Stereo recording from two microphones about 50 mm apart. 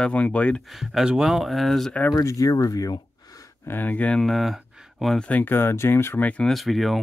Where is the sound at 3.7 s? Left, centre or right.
Left.